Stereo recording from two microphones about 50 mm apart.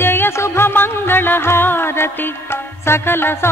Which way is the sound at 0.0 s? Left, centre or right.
Left.